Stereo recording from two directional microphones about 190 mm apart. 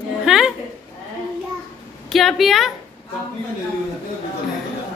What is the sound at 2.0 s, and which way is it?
Speech, centre (ahead or behind).